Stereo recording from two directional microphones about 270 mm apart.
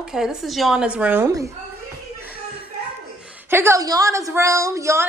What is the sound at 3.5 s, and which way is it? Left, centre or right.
A woman's voice, centre.